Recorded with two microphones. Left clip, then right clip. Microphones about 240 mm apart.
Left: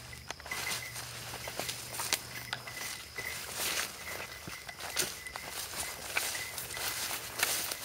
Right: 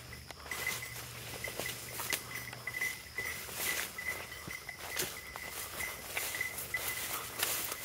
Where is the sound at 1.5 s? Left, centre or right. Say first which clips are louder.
Left 2 dB; left.